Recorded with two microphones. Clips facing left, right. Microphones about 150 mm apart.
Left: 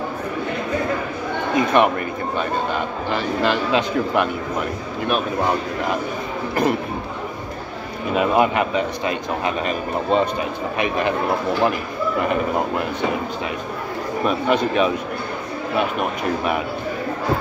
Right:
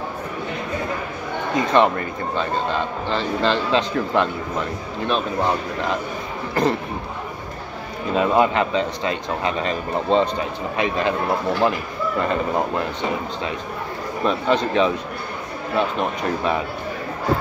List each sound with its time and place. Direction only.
1.7 s speech: 15° left (ahead or behind)
8.1 s speech: 15° left (ahead or behind)
14.2 s speech: 10° left (ahead or behind)